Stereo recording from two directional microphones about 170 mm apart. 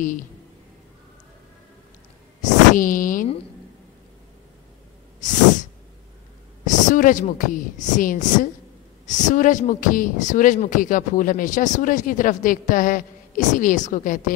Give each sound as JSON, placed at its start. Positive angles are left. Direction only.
{"t": 2.4, "sound": "speech", "side_deg": 50}
{"t": 6.6, "sound": "a woman's voice", "side_deg": 50}